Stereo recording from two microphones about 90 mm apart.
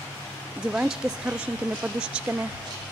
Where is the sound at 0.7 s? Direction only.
10° right (ahead or behind).